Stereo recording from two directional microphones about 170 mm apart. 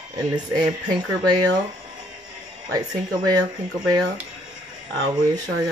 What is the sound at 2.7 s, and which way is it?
Speech, 25° right (ahead or behind).